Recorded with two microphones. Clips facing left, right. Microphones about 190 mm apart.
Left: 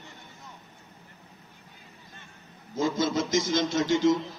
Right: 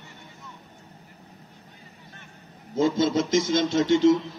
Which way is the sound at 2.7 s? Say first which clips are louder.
Right 4 dB; 25° right (ahead or behind).